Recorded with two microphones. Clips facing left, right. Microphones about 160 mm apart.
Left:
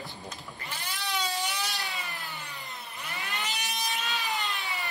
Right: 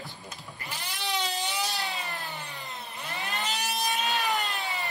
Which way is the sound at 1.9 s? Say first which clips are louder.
Right 3 dB; 40° right (ahead or behind).